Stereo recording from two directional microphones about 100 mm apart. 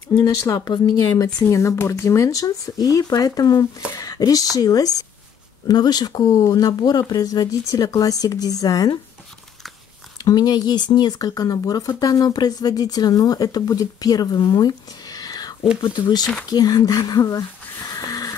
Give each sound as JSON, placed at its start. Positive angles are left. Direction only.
{"t": 0.2, "sound": "speech", "side_deg": 35}
{"t": 10.1, "sound": "speech", "side_deg": 40}
{"t": 17.9, "sound": "a sound", "side_deg": 35}